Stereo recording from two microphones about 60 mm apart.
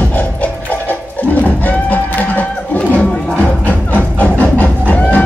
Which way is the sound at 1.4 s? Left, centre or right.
Left.